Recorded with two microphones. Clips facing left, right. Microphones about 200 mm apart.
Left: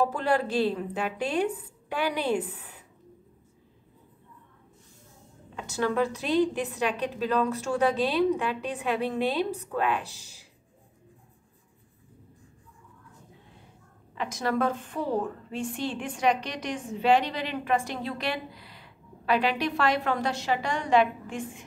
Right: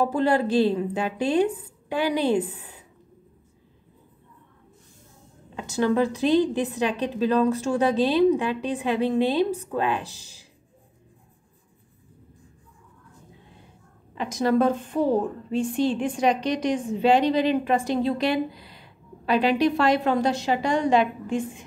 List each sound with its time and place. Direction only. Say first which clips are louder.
0.0 s a woman's voice: right 4 dB; 20° right (ahead or behind)
5.6 s a woman's voice: right 5 dB; 20° right (ahead or behind)
14.1 s a woman's voice: right 6 dB; 25° right (ahead or behind)
15.5 s a woman's voice: right 9 dB; 35° right (ahead or behind)
16.3 s a woman's voice: right 9 dB; 15° right (ahead or behind)
17.3 s a woman's voice: right 7 dB; 35° right (ahead or behind)
17.9 s a woman's voice: right 9 dB; 20° right (ahead or behind)